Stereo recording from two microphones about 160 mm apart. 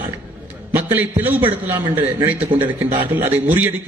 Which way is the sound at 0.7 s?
10° right (ahead or behind).